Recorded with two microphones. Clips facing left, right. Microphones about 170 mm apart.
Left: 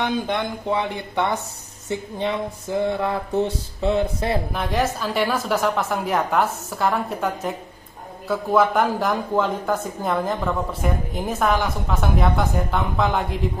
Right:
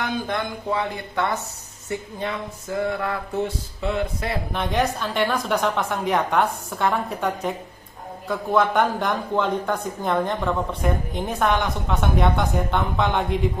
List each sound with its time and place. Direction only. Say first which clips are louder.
0.0 s speech: left 3 dB; 25° left (ahead or behind)
4.5 s speech: even; centre (ahead or behind)